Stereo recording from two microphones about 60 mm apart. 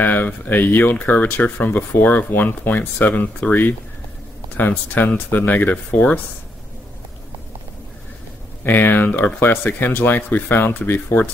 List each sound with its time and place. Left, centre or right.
0.0 s speech: left
8.6 s speech: left